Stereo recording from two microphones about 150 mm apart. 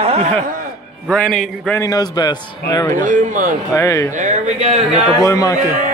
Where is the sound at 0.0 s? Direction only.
45° right (ahead or behind).